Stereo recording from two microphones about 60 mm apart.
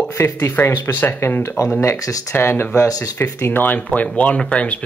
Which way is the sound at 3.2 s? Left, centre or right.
Left.